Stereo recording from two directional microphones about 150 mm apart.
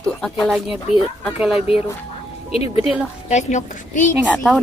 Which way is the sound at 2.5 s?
40° left (ahead or behind).